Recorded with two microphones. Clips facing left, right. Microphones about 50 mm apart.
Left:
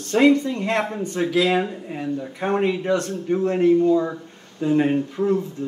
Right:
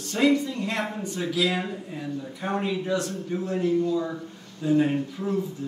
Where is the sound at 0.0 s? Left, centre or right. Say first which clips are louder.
Left 6 dB; left.